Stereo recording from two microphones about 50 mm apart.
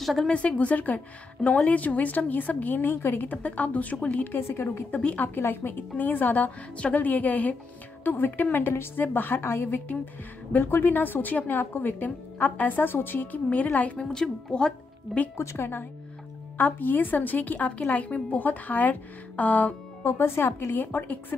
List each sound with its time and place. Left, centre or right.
0.0 s speech: centre
0.3 s a woman's voice: left
4.3 s a woman's voice: left
5.0 s a woman's voice: left
5.4 s a woman's voice: left
9.4 s a woman's voice: left
12.8 s a woman's voice: left
13.5 s a woman's voice: left
13.9 s a woman's voice: centre
15.3 s a woman's voice: left
16.5 s a woman's voice: left
20.1 s a woman's voice: left